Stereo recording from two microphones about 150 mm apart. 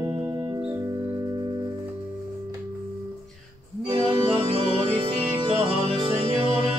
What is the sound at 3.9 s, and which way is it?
Organ, 35° right (ahead or behind).